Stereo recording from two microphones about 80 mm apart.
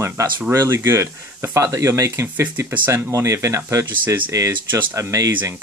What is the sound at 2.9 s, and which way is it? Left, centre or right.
Speech, right.